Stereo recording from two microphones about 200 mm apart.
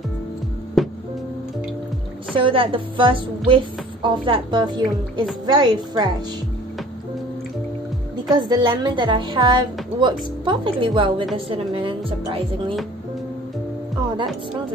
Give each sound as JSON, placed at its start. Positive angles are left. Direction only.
{"t": 0.8, "sound": "music", "side_deg": 0}
{"t": 2.3, "sound": "a woman's voice", "side_deg": -25}
{"t": 8.3, "sound": "a woman's voice", "side_deg": -20}